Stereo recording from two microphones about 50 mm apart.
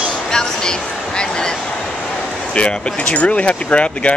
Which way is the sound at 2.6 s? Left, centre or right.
Centre.